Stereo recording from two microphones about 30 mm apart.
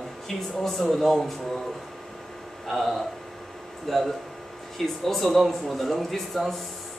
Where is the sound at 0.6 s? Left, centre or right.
Centre.